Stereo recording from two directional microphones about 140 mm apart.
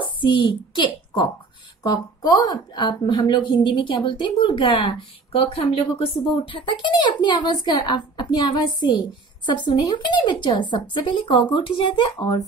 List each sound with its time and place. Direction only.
0.0 s a child's voice: 35° left (ahead or behind)
1.8 s speech: 25° left (ahead or behind)